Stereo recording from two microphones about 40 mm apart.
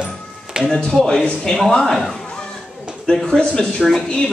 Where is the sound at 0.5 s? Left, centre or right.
Right.